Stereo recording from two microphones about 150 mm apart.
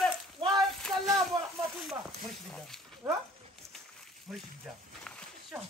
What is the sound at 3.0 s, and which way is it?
Dog, 20° right (ahead or behind).